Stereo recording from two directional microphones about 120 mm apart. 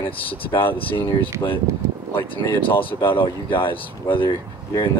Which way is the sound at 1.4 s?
30° left (ahead or behind).